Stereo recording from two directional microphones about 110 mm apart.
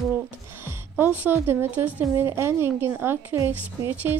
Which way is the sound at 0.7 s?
20° right (ahead or behind).